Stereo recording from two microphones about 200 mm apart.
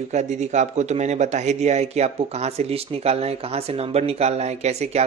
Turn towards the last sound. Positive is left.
turn(degrees=-35)  # may be behind; listen again after turning